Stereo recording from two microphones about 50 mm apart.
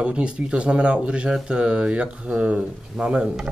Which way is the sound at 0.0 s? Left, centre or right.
Right.